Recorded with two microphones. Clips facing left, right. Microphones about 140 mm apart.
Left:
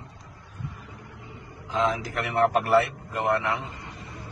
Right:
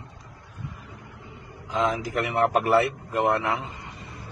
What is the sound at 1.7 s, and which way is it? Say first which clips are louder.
A man's voice: even; centre (ahead or behind).